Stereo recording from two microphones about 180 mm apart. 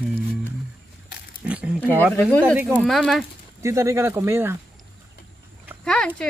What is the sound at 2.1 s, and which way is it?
Speech, 10° left (ahead or behind).